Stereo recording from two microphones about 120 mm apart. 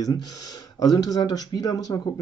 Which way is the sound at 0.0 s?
30° left (ahead or behind).